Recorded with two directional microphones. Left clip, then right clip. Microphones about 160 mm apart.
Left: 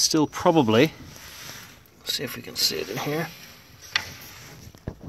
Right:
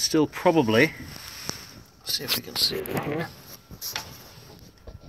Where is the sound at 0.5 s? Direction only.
20° left (ahead or behind).